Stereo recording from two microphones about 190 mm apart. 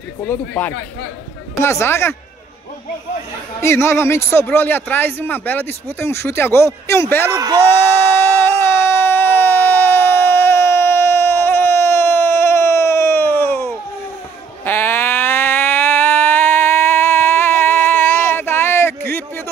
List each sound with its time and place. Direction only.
0.3 s speech: 10° left (ahead or behind)
3.6 s speech: 15° left (ahead or behind)
7.2 s a man's voice: 15° right (ahead or behind)
7.8 s a sound: 10° left (ahead or behind)